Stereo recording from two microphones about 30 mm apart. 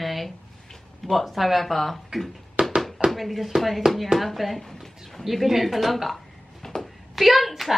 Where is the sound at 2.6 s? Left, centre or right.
Right.